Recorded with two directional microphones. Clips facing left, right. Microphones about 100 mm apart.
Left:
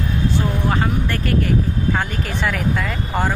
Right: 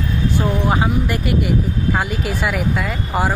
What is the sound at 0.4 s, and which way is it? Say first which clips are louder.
Speech: right 5 dB; 15° right (ahead or behind).